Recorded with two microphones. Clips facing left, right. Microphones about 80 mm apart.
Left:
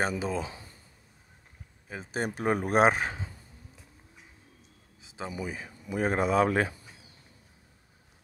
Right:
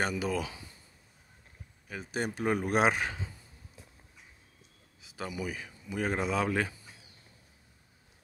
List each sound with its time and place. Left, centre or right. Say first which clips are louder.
0.0 s speech: left 1 dB; left
1.9 s speech: left 2 dB; left
5.0 s a sound: left 1 dB; left
5.3 s speech: left 1 dB; left
5.9 s speech: left 5 dB; left